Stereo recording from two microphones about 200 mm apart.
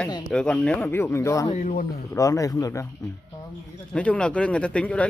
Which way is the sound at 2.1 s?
15° left (ahead or behind).